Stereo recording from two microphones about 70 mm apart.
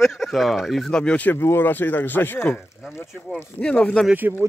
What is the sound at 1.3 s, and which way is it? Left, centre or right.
Speech, left.